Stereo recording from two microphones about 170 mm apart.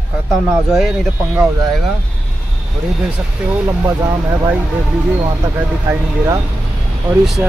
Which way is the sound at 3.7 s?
20° right (ahead or behind).